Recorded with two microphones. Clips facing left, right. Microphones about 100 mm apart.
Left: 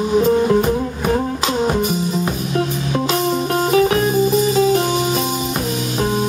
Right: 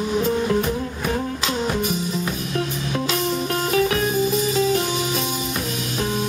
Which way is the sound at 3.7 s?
30° left (ahead or behind).